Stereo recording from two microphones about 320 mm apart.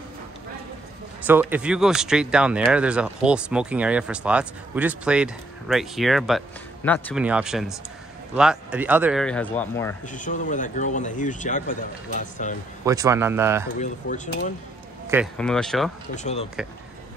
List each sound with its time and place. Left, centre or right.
1.2 s speech: centre
10.0 s speech: left
12.8 s speech: centre
13.7 s speech: left
15.0 s speech: centre
16.2 s speech: left